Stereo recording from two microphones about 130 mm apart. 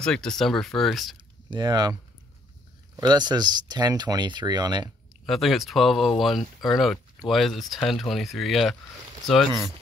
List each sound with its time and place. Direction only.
0.0 s speech: 5° left (ahead or behind)
1.5 s speech: 35° right (ahead or behind)
3.0 s speech: 35° right (ahead or behind)
5.2 s speech: centre (ahead or behind)